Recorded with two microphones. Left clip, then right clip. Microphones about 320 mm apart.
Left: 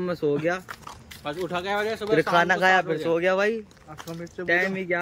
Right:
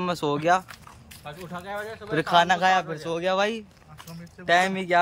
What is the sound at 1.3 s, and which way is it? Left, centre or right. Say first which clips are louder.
Speech: left 8 dB; left.